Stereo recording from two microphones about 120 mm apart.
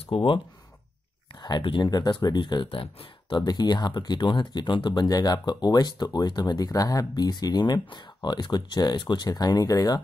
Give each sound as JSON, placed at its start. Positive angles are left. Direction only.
{"t": 0.0, "sound": "speech", "side_deg": 50}